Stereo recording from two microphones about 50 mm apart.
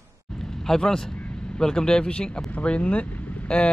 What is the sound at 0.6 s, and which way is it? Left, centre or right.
A man's voice, centre.